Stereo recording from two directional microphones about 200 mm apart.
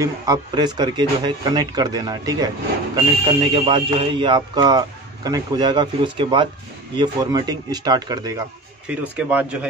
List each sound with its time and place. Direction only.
0.0 s speech: 20° right (ahead or behind)
8.8 s speech: 5° right (ahead or behind)